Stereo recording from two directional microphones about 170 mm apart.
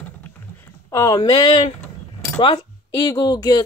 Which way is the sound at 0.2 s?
15° left (ahead or behind).